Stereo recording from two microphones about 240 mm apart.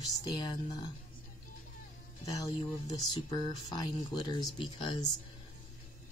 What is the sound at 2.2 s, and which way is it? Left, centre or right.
Speech, centre.